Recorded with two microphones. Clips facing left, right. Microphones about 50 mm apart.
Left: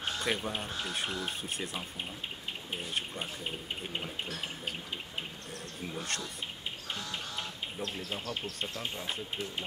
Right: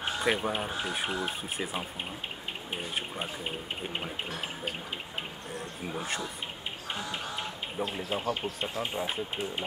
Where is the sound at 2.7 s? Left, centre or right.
Centre.